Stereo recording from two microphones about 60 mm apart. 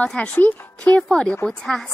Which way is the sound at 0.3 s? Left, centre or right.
Left.